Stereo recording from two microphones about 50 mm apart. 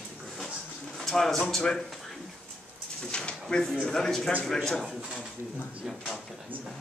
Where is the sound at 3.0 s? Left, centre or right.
Centre.